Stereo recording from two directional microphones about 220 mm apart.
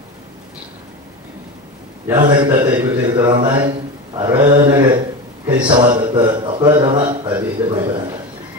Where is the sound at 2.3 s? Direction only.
20° right (ahead or behind).